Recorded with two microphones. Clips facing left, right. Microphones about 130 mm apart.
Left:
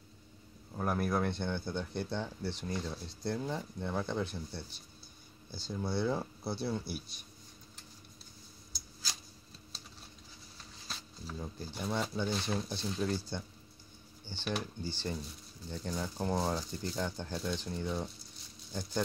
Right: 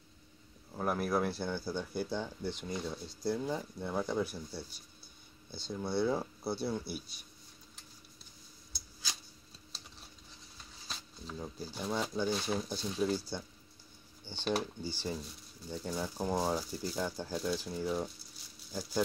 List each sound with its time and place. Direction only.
0.7 s speech: centre (ahead or behind)
5.7 s speech: centre (ahead or behind)
10.9 s a sound: centre (ahead or behind)
11.4 s speech: 10° right (ahead or behind)